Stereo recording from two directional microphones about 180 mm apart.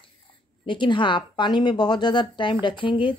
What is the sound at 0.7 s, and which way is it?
A woman's voice, 25° left (ahead or behind).